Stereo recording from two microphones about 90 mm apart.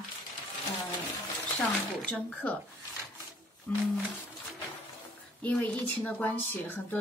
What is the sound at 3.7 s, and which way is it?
Speech, 20° left (ahead or behind).